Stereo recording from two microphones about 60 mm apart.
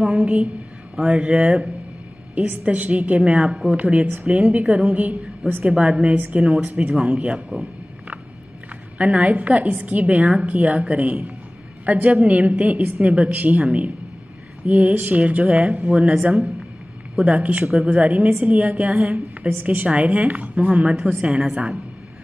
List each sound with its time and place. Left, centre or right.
0.0 s a woman's voice: right
6.4 s a woman's voice: centre
8.9 s a woman's voice: right
17.2 s a woman's voice: right